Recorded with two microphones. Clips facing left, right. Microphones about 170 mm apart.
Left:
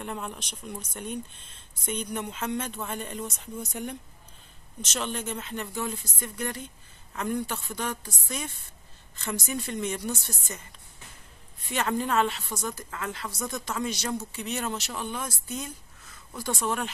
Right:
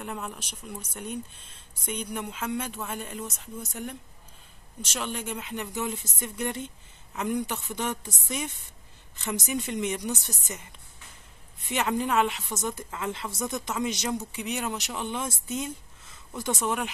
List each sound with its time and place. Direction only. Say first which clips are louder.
0.0 s speech: left 1 dB; 5° right (ahead or behind)
11.7 s speech: right 1 dB; 15° right (ahead or behind)